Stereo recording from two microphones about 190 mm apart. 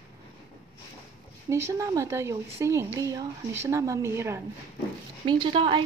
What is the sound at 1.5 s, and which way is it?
Speech, 15° right (ahead or behind).